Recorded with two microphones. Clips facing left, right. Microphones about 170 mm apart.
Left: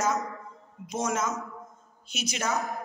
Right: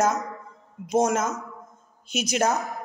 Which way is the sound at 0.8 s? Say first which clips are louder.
Right 7 dB; 45° right (ahead or behind).